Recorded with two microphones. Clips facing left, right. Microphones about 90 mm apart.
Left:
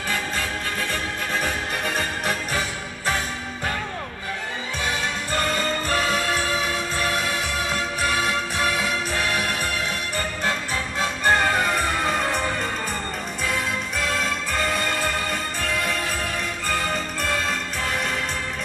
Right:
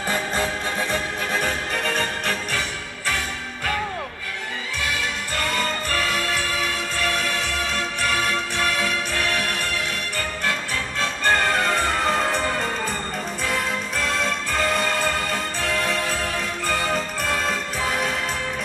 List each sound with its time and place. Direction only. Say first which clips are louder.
0.1 s music: right 3 dB; 25° right (ahead or behind)
5.9 s music: left 2 dB; 25° left (ahead or behind)
11.0 s music: left 1 dB; 15° left (ahead or behind); by 18.1 s 5° right (ahead or behind)